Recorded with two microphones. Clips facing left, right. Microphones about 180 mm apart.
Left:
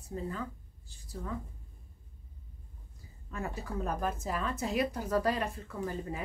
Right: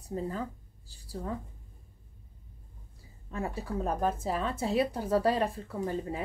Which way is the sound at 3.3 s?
30° right (ahead or behind).